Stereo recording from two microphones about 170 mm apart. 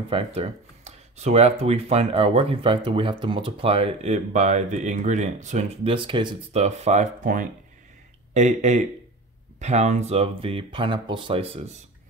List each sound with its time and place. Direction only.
0.1 s speech: 35° right (ahead or behind)
6.6 s speech: 40° right (ahead or behind)